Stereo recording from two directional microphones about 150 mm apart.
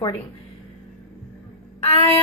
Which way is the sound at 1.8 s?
40° left (ahead or behind).